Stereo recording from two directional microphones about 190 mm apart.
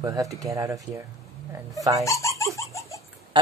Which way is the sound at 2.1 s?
15° left (ahead or behind).